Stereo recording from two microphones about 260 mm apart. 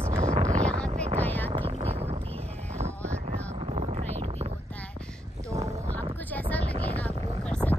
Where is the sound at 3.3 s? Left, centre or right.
Right.